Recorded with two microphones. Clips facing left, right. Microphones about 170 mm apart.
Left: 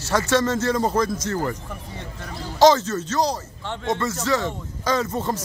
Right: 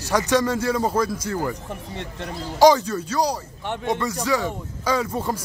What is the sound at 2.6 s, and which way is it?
Speech, 15° right (ahead or behind).